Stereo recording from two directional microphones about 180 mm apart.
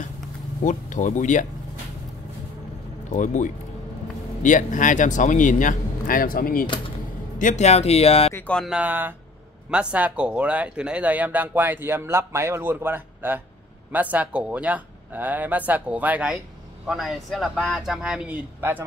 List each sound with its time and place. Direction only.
0.7 s speech: 45° left (ahead or behind)
3.1 s speech: 45° left (ahead or behind)
8.4 s speech: 5° left (ahead or behind); by 18.9 s 10° right (ahead or behind)